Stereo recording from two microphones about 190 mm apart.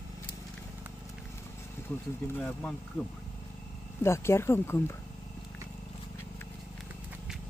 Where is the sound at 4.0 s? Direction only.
15° left (ahead or behind).